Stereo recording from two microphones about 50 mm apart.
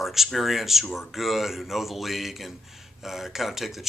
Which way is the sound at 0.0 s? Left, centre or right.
Centre.